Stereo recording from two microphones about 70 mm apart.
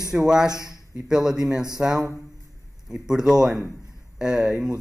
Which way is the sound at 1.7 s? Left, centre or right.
Centre.